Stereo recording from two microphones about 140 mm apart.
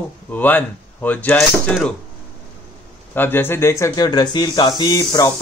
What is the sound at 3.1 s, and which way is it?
Speech, 15° left (ahead or behind).